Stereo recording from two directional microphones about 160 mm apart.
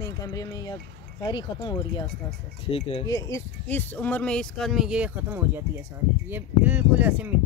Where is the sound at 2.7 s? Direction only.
35° left (ahead or behind).